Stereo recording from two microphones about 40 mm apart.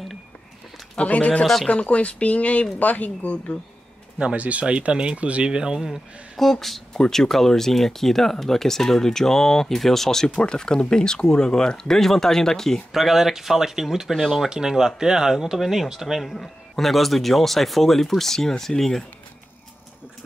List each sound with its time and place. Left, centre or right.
0.9 s speech: left
1.4 s a man's voice: centre
1.7 s speech: left
4.4 s speech: right
5.8 s a man's voice: centre
12.9 s speech: centre
14.5 s speech: centre
16.2 s a man's voice: centre